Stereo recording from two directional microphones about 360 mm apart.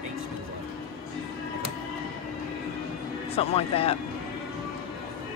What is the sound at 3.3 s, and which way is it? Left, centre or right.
Speech, centre.